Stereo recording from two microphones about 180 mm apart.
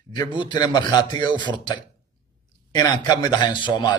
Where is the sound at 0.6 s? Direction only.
25° left (ahead or behind).